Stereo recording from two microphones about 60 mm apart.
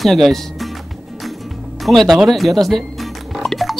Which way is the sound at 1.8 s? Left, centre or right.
Centre.